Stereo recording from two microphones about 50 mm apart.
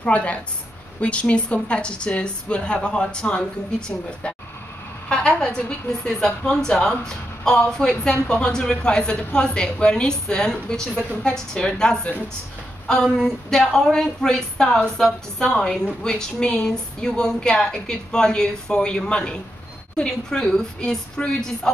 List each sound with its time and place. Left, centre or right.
0.0 s speech: left
5.1 s a woman's voice: centre